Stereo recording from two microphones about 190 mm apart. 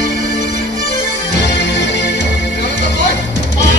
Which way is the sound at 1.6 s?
65° left (ahead or behind).